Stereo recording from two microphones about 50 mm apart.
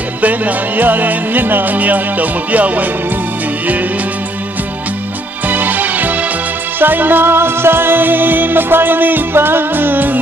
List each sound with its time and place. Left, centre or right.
0.2 s music: right
5.5 s music: right